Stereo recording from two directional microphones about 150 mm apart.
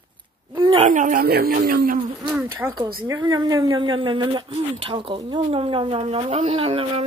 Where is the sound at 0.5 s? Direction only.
30° right (ahead or behind).